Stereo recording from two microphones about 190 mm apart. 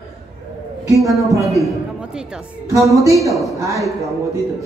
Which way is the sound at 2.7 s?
15° right (ahead or behind).